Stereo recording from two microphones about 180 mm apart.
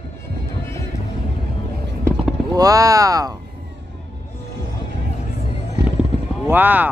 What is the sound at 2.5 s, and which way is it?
Speech, 20° right (ahead or behind).